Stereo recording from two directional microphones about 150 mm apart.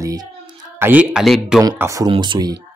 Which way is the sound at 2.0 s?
30° right (ahead or behind).